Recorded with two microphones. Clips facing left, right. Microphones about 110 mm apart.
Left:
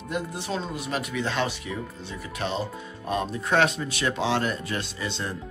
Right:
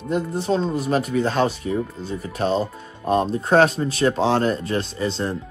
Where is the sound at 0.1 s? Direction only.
35° right (ahead or behind).